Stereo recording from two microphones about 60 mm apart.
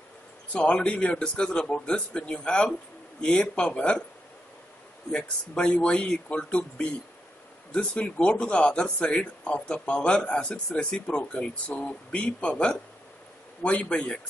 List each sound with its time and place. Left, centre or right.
0.5 s a man's voice: centre
5.1 s a man's voice: centre